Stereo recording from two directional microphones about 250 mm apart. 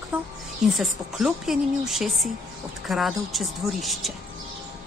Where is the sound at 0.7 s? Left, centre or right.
Centre.